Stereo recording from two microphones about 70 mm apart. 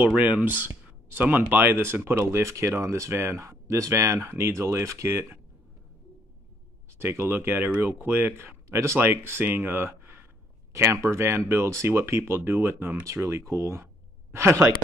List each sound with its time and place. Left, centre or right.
0.0 s speech: right
7.0 s speech: right
10.7 s speech: right
13.0 s speech: right